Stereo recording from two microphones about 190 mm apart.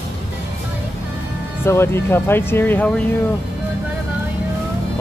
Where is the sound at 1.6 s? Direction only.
15° left (ahead or behind).